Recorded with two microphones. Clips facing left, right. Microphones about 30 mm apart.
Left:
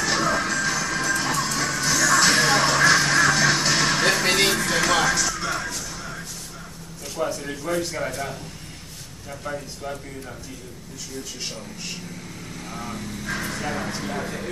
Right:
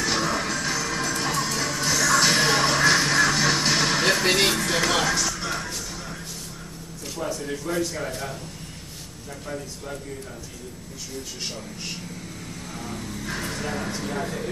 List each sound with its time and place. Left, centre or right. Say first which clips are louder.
0.0 s music: left 2 dB; centre
7.2 s a sound: left 4 dB; left
12.7 s speech: left 2 dB; centre
13.0 s speech: left 2 dB; centre